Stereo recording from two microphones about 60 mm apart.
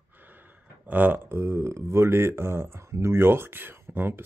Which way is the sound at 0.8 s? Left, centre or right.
Right.